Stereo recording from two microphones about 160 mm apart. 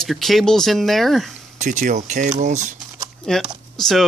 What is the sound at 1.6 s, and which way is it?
Speech, 50° right (ahead or behind).